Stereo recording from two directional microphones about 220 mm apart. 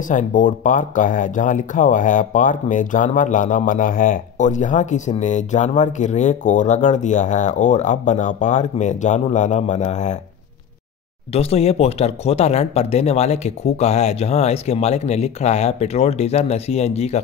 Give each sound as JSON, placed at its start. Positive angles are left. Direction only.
{"t": 0.1, "sound": "speech", "side_deg": 35}
{"t": 11.3, "sound": "speech", "side_deg": 30}